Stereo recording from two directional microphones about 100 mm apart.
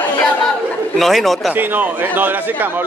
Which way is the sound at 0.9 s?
Centre (ahead or behind).